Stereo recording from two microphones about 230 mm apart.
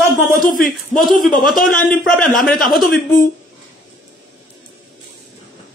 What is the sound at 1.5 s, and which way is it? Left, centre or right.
Speech, left.